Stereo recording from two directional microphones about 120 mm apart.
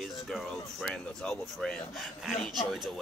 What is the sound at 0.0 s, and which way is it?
Speech, centre (ahead or behind).